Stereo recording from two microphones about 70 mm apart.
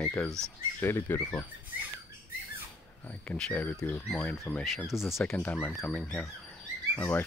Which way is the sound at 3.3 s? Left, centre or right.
Left.